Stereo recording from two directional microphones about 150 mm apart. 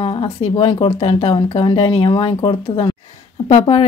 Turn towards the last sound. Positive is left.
turn(degrees=45)  # may be behind; listen again after turning